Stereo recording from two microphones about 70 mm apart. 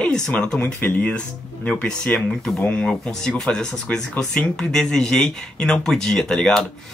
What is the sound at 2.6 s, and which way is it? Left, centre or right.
Speech, left.